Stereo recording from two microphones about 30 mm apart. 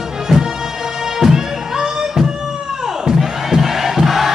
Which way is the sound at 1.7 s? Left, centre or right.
Right.